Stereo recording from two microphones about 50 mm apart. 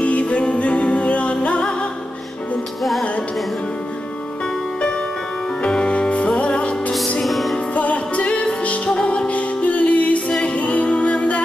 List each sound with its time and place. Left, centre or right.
0.0 s music: left
2.8 s music: centre
5.6 s music: centre
7.2 s music: centre
7.7 s music: left